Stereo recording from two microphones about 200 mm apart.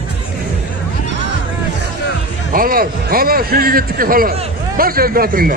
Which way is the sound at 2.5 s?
45° right (ahead or behind).